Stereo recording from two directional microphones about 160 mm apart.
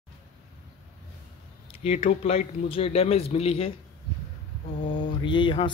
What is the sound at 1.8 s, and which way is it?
Speech, 40° left (ahead or behind).